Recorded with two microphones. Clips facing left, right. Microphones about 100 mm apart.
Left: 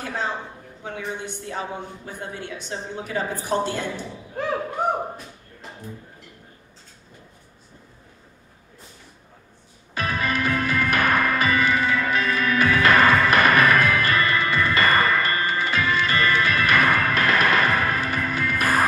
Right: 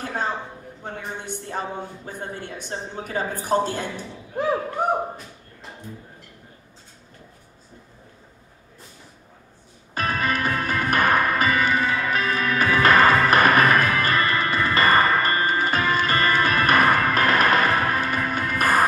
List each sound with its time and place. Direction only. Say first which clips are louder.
0.0 s a sound: right 1 dB; 50° right (ahead or behind)
0.8 s a woman's voice: left 2 dB; 45° right (ahead or behind)
9.9 s music: right 1 dB; 45° right (ahead or behind)